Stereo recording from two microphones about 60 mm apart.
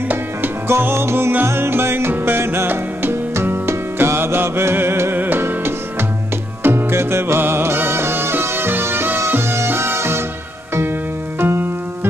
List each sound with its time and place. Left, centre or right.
0.1 s music: right
11.3 s music: right